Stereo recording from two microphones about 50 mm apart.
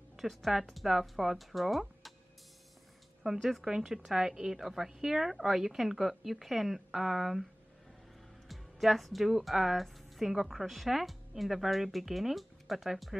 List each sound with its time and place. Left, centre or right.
0.2 s speech: centre
3.4 s a woman's voice: centre
8.5 s a woman's voice: centre